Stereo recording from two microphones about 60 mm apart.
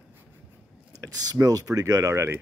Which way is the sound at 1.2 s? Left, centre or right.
Right.